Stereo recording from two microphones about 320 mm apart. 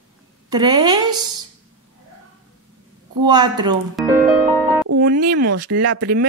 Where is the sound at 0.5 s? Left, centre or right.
Centre.